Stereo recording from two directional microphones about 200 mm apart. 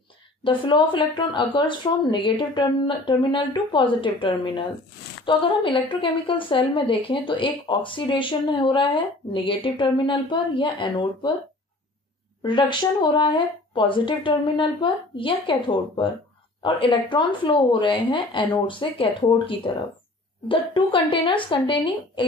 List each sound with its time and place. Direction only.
0.4 s a woman's voice: 25° left (ahead or behind)
12.4 s a woman's voice: 25° left (ahead or behind)